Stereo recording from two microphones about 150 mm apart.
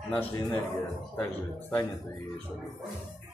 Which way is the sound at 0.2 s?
35° left (ahead or behind).